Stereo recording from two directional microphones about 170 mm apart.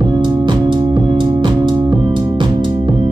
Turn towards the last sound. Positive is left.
turn(degrees=-30)  # may be behind; listen again after turning